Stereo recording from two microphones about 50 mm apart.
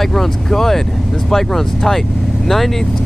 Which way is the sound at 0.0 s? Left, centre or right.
Centre.